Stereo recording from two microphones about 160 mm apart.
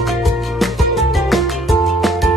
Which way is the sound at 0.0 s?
Centre (ahead or behind).